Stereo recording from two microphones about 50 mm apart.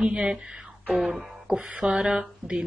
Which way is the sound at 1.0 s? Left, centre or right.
Centre.